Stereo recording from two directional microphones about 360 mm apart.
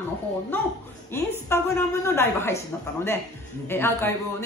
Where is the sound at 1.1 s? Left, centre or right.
Centre.